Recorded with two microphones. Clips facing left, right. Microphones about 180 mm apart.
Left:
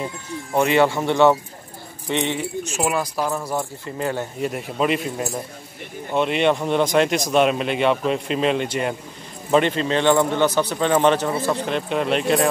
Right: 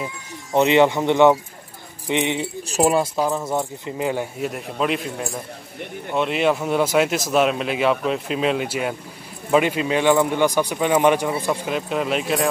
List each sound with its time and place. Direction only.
0.5 s speech: 20° right (ahead or behind)
2.6 s speech: 35° right (ahead or behind)
3.2 s speech: 20° right (ahead or behind)
4.4 s speech: centre (ahead or behind)